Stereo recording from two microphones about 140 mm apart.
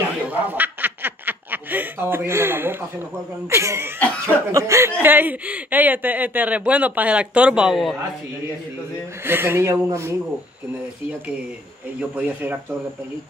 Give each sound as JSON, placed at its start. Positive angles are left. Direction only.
{"t": 0.3, "sound": "snicker", "side_deg": -10}
{"t": 3.4, "sound": "speech", "side_deg": -20}
{"t": 9.2, "sound": "speech", "side_deg": -15}
{"t": 12.0, "sound": "speech", "side_deg": -10}